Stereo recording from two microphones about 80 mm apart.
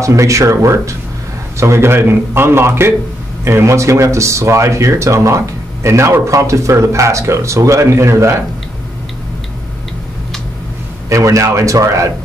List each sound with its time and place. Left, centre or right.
0.0 s speech: right
11.1 s speech: right